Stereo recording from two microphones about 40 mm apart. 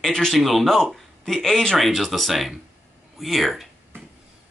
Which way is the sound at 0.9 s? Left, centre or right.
Centre.